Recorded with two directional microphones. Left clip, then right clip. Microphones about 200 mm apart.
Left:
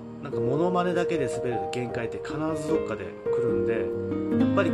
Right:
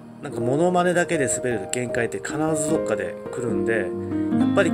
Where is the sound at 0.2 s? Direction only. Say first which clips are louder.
Right 4 dB; 20° right (ahead or behind).